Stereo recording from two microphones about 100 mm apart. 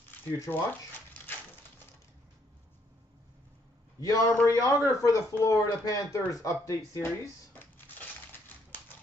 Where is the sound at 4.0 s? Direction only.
35° left (ahead or behind).